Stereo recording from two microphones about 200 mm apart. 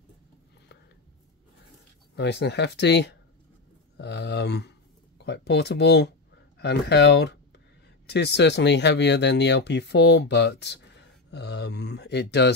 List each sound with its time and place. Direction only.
2.1 s speech: 60° left (ahead or behind)